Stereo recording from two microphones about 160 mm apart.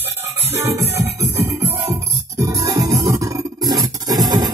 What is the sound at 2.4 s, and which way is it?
Music, 20° right (ahead or behind).